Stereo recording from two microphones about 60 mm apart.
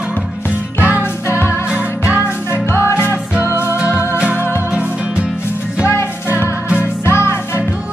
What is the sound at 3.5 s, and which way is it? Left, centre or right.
Music, right.